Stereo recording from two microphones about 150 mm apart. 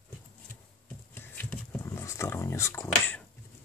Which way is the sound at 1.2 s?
10° left (ahead or behind).